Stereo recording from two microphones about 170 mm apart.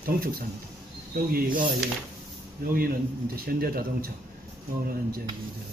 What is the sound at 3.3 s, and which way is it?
Speech, 60° right (ahead or behind).